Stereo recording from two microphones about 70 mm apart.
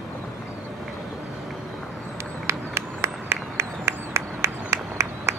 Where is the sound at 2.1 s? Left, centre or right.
Right.